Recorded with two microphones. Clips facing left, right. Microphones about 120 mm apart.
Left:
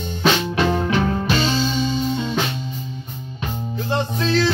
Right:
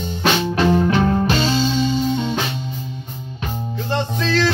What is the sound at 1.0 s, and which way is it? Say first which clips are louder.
Music: right 3 dB; 35° right (ahead or behind).